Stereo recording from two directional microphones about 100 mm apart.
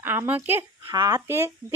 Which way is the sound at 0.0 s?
20° right (ahead or behind).